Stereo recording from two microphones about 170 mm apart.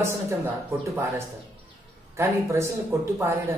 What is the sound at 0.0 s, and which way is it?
Speech, 15° right (ahead or behind).